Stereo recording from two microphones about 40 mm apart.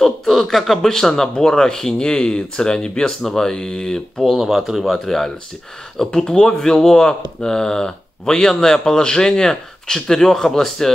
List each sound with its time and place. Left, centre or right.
0.0 s a man's voice: centre
4.2 s speech: centre
5.0 s speech: centre